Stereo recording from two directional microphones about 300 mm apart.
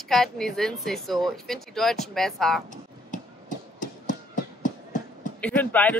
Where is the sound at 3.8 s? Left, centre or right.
Left.